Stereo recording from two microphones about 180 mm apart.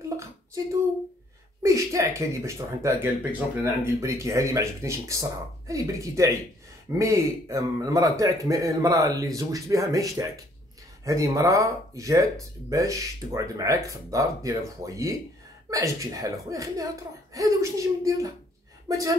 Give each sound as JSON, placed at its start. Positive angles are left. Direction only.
{"t": 1.6, "sound": "speech", "side_deg": -15}